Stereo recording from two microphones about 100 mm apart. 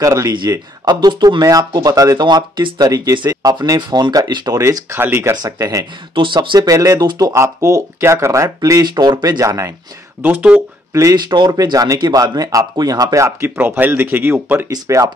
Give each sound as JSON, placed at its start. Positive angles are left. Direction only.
{"t": 0.0, "sound": "speech", "side_deg": -30}
{"t": 0.3, "sound": "speech", "side_deg": -45}
{"t": 4.6, "sound": "speech", "side_deg": -30}
{"t": 5.3, "sound": "speech", "side_deg": -35}
{"t": 6.1, "sound": "speech", "side_deg": -55}
{"t": 6.7, "sound": "speech", "side_deg": -35}
{"t": 10.2, "sound": "speech", "side_deg": -15}
{"t": 10.9, "sound": "speech", "side_deg": -30}
{"t": 11.1, "sound": "speech", "side_deg": -45}
{"t": 14.7, "sound": "speech", "side_deg": -30}